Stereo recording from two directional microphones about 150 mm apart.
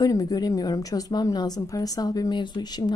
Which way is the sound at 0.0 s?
25° left (ahead or behind).